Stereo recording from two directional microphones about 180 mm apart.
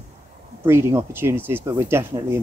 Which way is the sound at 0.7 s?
15° right (ahead or behind).